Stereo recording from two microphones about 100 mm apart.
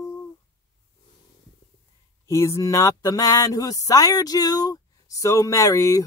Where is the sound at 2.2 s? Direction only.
30° left (ahead or behind).